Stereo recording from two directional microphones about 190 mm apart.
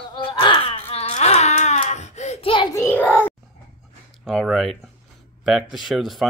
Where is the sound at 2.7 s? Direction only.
10° left (ahead or behind).